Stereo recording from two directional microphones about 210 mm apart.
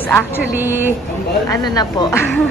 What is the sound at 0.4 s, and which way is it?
Speech, 10° right (ahead or behind).